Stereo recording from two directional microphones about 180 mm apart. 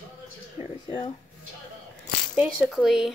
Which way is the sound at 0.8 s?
25° left (ahead or behind).